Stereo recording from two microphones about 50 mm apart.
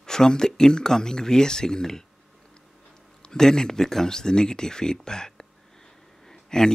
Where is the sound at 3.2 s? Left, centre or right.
Centre.